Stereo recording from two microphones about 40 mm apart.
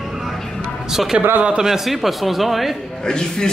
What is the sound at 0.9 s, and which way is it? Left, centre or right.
Speech, centre.